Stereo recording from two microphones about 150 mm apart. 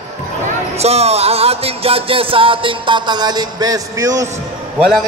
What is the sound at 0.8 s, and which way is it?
Music, 45° right (ahead or behind).